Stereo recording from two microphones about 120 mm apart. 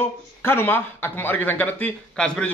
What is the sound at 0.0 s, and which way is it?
A man's voice, 20° left (ahead or behind).